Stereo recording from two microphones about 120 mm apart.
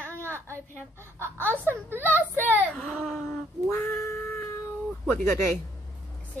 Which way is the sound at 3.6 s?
15° left (ahead or behind).